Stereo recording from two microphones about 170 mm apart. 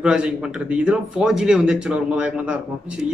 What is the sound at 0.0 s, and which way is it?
Speech, 5° right (ahead or behind).